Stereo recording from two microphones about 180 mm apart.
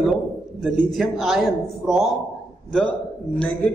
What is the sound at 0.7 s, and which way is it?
Speech, centre (ahead or behind).